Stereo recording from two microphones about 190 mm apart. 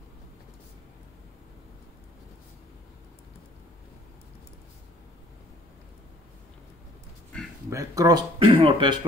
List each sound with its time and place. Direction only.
7.7 s speech: 15° right (ahead or behind)